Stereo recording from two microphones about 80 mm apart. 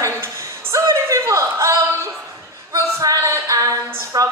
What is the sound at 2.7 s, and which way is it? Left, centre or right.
Music, right.